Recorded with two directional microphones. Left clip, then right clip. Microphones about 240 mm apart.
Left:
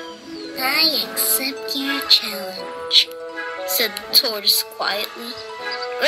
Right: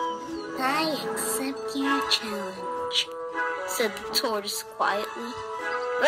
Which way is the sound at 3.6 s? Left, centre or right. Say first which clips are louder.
Left 5 dB; centre.